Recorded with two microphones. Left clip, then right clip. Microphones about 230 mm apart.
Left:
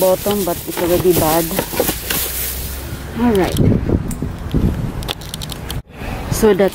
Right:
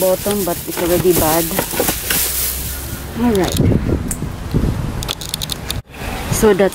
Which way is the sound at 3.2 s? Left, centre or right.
Centre.